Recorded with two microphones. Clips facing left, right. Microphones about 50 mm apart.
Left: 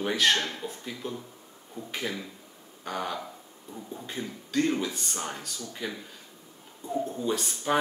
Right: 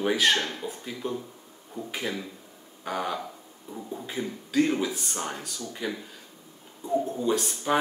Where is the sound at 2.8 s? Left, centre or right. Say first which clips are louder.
Right 3 dB; centre.